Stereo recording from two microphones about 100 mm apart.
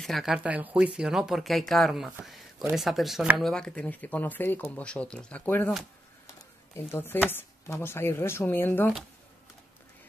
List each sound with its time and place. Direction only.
0.0 s speech: centre (ahead or behind); by 5.7 s 20° left (ahead or behind)
6.9 s speech: 20° left (ahead or behind)